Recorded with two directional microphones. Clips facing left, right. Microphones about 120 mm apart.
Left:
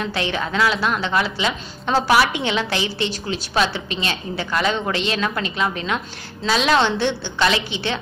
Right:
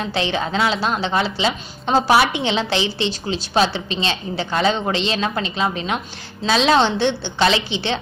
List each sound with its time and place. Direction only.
0.0 s a woman's voice: 25° right (ahead or behind)